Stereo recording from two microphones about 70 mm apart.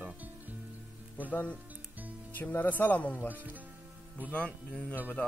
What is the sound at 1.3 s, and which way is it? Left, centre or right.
Speech, left.